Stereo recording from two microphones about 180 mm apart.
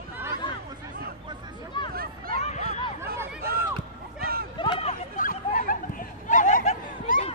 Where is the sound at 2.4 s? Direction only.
40° left (ahead or behind).